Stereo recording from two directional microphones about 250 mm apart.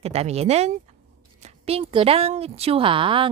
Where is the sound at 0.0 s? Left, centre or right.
Right.